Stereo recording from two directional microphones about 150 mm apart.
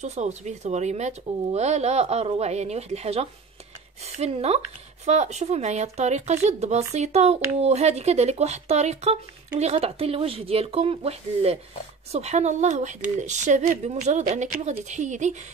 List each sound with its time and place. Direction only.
0.0 s speech: 50° right (ahead or behind)